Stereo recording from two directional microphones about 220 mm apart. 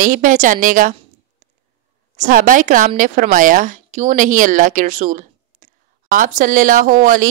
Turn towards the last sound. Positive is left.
turn(degrees=-35)  # may be behind; listen again after turning